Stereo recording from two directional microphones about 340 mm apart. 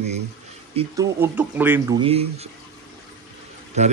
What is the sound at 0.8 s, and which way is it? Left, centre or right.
A man's voice, centre.